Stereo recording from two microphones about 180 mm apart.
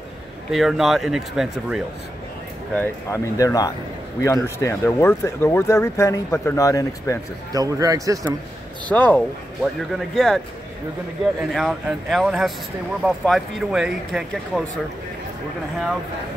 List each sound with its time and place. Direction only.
0.5 s speech: centre (ahead or behind)
2.7 s speech: 15° left (ahead or behind)
7.5 s speech: 20° right (ahead or behind)
8.9 s speech: 10° left (ahead or behind)
11.5 s speech: centre (ahead or behind)